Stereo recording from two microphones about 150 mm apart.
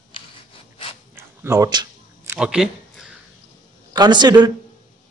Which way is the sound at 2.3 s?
5° right (ahead or behind).